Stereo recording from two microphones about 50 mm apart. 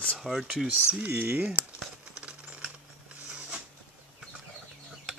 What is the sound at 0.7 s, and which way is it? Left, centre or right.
Speech, right.